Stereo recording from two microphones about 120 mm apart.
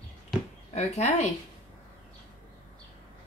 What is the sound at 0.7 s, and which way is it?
Speech, 70° left (ahead or behind).